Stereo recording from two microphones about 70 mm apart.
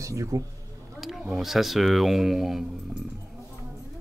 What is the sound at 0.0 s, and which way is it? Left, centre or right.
Speech, right.